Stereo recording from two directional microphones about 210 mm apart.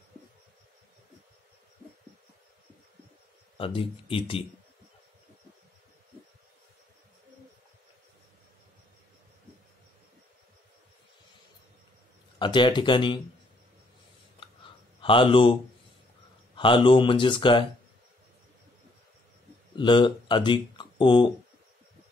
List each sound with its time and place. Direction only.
3.5 s speech: 25° left (ahead or behind)
12.4 s speech: 20° left (ahead or behind)
15.0 s speech: 25° left (ahead or behind)
16.5 s speech: 25° left (ahead or behind)
19.8 s speech: 20° left (ahead or behind)